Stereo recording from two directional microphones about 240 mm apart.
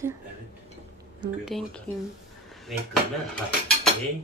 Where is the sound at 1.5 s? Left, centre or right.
Centre.